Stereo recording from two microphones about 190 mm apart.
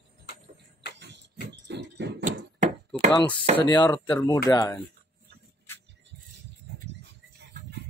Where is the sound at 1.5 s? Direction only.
60° right (ahead or behind).